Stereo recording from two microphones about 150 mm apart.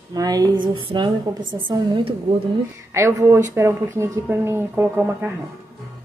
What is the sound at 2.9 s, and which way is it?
Speech, 15° right (ahead or behind).